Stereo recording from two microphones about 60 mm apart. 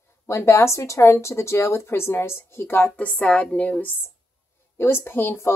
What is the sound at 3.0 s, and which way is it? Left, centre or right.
Speech, centre.